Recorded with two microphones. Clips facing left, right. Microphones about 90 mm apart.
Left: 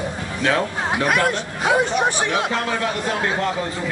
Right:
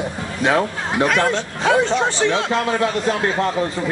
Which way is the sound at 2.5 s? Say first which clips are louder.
Right 4 dB; 20° right (ahead or behind).